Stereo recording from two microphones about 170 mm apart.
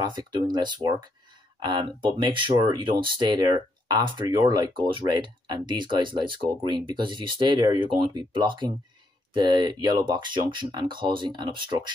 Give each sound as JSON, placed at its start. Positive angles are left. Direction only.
{"t": 0.0, "sound": "speech", "side_deg": -25}